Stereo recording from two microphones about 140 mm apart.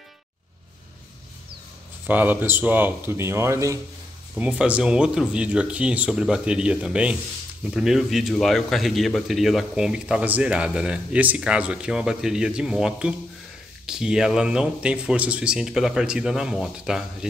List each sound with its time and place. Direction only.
2.0 s speech: 15° right (ahead or behind)
4.4 s speech: 10° right (ahead or behind)